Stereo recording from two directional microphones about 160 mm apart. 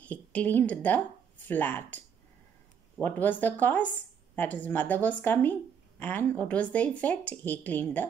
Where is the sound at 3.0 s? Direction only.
10° left (ahead or behind).